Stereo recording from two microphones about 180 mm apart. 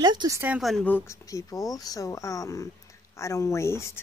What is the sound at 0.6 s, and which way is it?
Speech, centre (ahead or behind).